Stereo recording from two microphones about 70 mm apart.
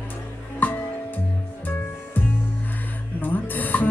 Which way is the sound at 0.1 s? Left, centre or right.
Left.